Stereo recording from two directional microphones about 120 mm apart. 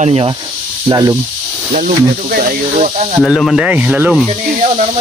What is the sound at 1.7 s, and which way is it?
Speech, 90° right.